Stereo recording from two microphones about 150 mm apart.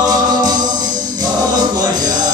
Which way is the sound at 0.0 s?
25° right (ahead or behind).